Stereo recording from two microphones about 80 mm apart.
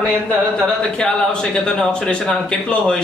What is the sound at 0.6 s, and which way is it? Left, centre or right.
Speech, centre.